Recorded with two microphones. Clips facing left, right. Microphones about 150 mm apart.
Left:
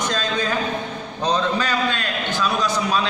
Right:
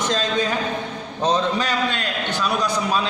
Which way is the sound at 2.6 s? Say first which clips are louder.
Even; 10° right (ahead or behind).